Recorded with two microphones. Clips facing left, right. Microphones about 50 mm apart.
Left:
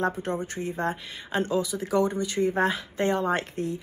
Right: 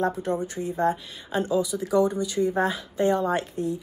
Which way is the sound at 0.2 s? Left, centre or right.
Left.